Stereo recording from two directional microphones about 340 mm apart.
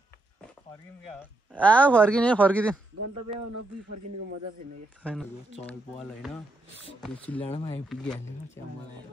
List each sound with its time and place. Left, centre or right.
1.5 s speech: centre
3.0 s speech: right
5.0 s speech: centre
6.8 s speech: centre
7.9 s speech: centre